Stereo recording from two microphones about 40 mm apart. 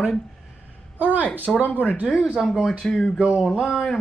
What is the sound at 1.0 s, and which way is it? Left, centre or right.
Speech, right.